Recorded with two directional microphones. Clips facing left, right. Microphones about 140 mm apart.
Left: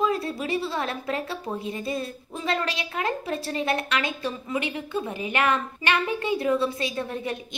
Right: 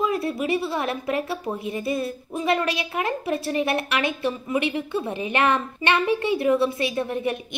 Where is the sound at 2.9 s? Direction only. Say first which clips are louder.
Right 1 dB; 20° right (ahead or behind).